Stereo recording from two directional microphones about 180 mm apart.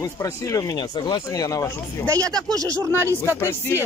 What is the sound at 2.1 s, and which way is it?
Speech, 20° right (ahead or behind).